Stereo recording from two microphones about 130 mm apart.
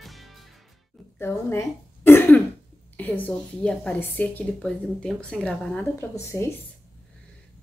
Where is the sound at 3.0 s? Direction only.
10° left (ahead or behind).